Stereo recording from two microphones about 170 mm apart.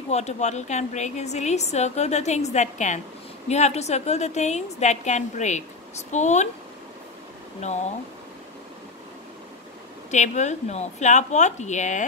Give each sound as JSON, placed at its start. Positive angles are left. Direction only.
{"t": 0.1, "sound": "a woman's voice", "side_deg": 40}
{"t": 10.1, "sound": "speech", "side_deg": 45}